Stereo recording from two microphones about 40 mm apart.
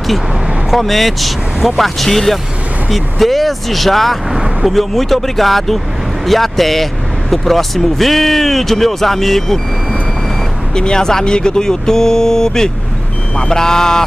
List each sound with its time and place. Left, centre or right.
0.7 s speech: centre
10.7 s speech: left